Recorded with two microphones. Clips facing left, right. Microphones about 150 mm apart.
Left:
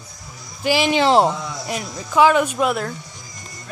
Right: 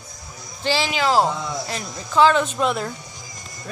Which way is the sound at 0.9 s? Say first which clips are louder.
Left 4 dB; 25° left (ahead or behind).